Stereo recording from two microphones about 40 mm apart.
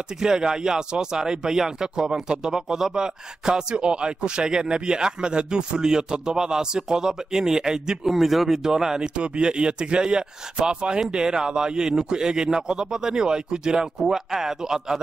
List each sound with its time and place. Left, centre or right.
0.2 s speech: centre
8.0 s speech: centre